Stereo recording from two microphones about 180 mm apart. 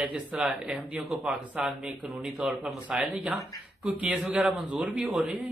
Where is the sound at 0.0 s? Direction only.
5° right (ahead or behind).